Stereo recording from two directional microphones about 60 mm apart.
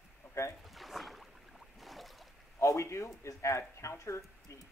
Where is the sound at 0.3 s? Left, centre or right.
Left.